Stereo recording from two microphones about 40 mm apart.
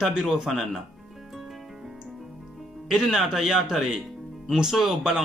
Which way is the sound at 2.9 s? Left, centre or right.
Centre.